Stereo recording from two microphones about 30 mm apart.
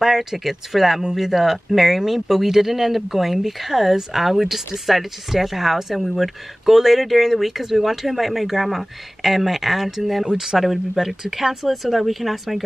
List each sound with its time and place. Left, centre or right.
0.0 s speech: centre
10.3 s speech: centre
10.6 s speech: centre